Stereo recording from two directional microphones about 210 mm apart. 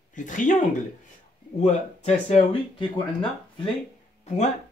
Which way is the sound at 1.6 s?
35° left (ahead or behind).